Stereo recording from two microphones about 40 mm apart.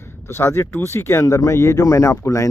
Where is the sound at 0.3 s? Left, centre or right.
Left.